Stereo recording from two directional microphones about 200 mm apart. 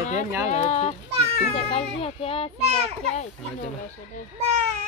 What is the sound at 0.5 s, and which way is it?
A child's voice, 35° left (ahead or behind).